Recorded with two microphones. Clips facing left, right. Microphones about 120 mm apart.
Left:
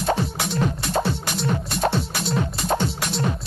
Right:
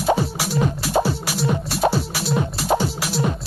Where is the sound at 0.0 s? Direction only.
5° right (ahead or behind).